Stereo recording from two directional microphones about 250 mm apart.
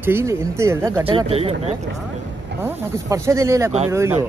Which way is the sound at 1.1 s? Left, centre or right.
Right.